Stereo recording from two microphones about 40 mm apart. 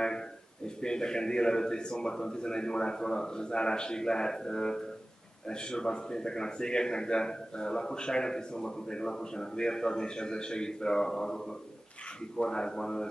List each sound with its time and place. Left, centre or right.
0.7 s a man's voice: centre
12.4 s a man's voice: centre